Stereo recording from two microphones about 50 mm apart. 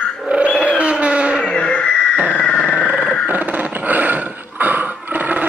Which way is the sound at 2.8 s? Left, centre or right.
Right.